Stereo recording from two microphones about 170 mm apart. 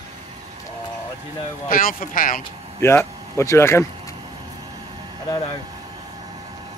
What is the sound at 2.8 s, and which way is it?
Speech, 15° left (ahead or behind).